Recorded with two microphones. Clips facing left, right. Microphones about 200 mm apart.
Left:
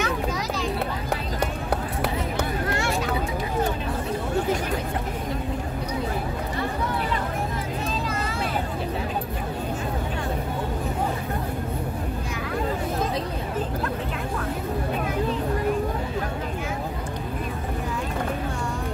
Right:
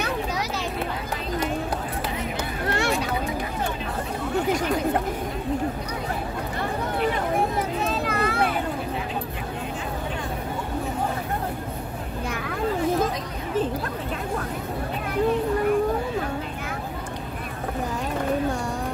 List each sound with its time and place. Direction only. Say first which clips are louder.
7.8 s vehicle: right 3 dB; 60° right (ahead or behind)